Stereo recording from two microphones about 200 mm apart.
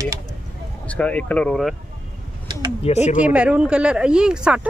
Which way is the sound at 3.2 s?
5° right (ahead or behind).